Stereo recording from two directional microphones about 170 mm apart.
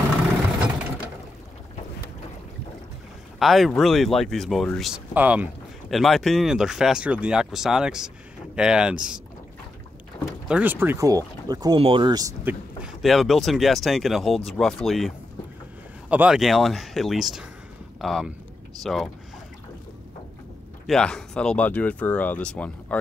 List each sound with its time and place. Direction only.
3.3 s speech: centre (ahead or behind)
10.5 s speech: 10° right (ahead or behind)
12.4 s speech: centre (ahead or behind)
20.8 s speech: 5° left (ahead or behind)